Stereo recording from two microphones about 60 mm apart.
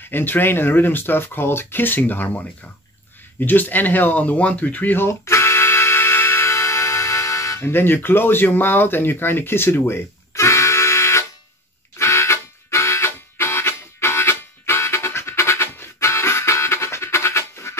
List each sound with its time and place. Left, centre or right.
0.0 s speech: left
3.3 s a sound: left
7.6 s speech: left
10.3 s music: left
12.0 s harmonica: left